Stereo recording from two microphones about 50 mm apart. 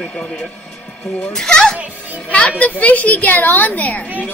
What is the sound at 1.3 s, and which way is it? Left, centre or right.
Speech, centre.